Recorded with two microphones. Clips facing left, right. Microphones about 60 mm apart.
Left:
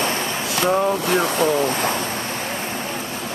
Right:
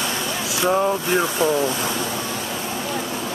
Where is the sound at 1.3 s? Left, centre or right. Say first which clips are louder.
Left 1 dB; left.